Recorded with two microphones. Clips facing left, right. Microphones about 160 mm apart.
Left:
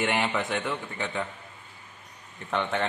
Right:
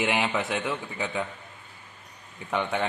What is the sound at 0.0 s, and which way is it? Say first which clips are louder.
Speech: right 1 dB; 5° right (ahead or behind).